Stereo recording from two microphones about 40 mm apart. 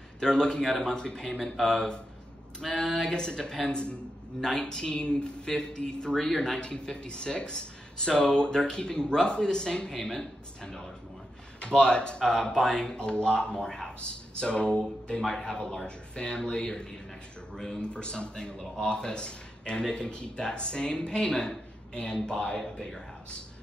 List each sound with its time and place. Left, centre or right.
0.2 s speech: left
2.6 s speech: centre
6.1 s speech: centre
6.4 s speech: left
9.9 s speech: centre
11.6 s speech: left
17.8 s speech: left
22.6 s speech: centre